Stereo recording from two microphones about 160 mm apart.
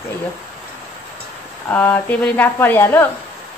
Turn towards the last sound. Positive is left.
turn(degrees=15)  # may be behind; listen again after turning